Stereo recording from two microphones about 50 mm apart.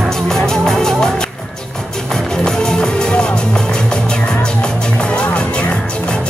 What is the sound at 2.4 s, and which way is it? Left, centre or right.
Music, centre.